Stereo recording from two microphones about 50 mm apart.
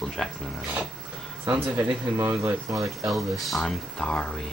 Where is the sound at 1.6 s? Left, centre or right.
Right.